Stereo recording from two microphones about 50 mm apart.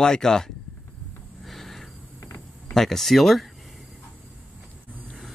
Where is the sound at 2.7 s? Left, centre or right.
Centre.